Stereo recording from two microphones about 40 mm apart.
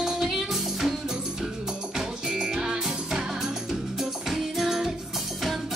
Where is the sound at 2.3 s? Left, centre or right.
Centre.